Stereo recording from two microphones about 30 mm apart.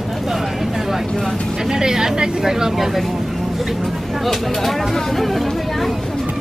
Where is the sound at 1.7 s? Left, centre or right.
Centre.